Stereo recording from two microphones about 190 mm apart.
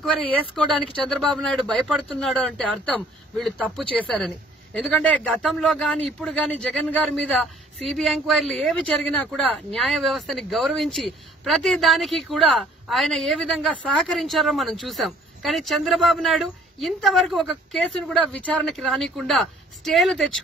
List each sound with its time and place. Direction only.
0.6 s speech: centre (ahead or behind)